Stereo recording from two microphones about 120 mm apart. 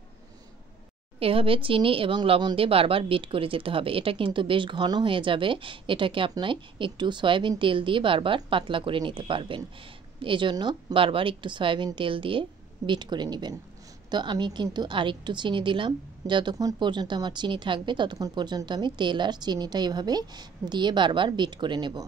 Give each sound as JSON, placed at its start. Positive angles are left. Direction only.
{"t": 1.2, "sound": "a woman's voice", "side_deg": -50}